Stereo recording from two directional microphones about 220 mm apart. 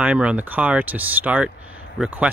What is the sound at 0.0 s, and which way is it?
Speech, 5° right (ahead or behind).